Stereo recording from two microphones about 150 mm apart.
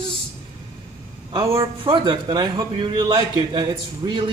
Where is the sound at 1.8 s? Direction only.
35° right (ahead or behind).